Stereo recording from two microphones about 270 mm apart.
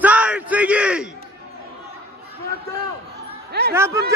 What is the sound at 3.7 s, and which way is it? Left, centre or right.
Speech, centre.